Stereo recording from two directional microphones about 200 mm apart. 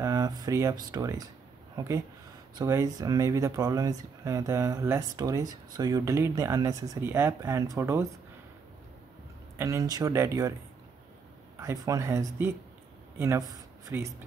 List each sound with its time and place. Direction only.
0.0 s speech: 20° right (ahead or behind)
9.6 s speech: 15° right (ahead or behind)
11.6 s speech: 15° right (ahead or behind)